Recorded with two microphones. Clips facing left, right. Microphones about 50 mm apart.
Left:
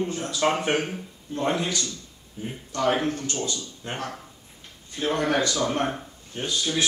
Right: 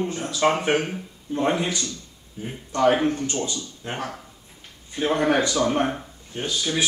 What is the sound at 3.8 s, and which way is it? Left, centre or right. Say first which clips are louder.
Speech: right 2 dB; centre.